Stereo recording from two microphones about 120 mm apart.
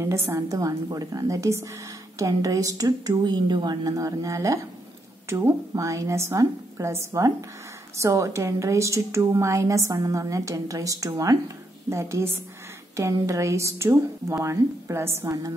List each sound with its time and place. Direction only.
0.0 s a woman's voice: 25° right (ahead or behind)